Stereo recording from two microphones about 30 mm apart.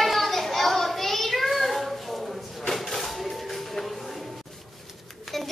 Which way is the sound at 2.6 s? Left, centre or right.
Centre.